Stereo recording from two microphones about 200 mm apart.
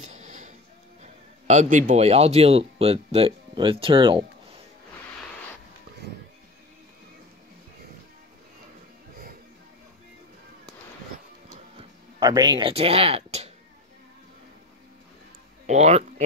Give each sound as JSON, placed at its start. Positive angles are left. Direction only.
{"t": 0.0, "sound": "music", "side_deg": -35}
{"t": 1.0, "sound": "a man's voice", "side_deg": -35}
{"t": 11.4, "sound": "music", "side_deg": -35}
{"t": 15.6, "sound": "speech", "side_deg": -35}